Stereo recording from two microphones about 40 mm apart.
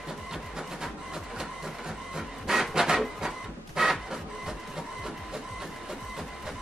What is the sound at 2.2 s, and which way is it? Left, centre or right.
Printer, centre.